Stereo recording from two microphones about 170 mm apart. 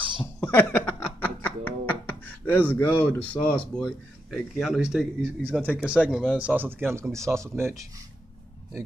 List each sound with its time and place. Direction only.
0.4 s speech: 10° left (ahead or behind); by 7.8 s 15° right (ahead or behind)